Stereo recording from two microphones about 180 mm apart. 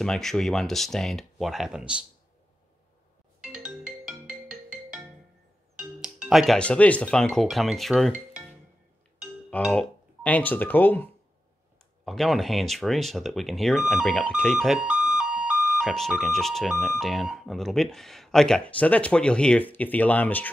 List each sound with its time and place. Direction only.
0.0 s speech: centre (ahead or behind)
3.3 s ringtone: 5° right (ahead or behind)
5.8 s speech: 5° right (ahead or behind)
9.7 s speech: 10° left (ahead or behind)